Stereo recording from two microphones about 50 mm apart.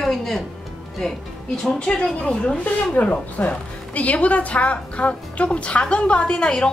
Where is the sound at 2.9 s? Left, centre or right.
Left.